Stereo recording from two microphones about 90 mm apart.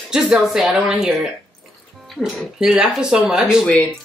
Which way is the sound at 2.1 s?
5° right (ahead or behind).